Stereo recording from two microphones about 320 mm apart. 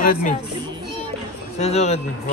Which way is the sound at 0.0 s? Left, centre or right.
Left.